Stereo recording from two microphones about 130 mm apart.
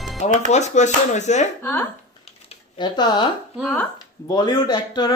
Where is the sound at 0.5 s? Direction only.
60° left (ahead or behind).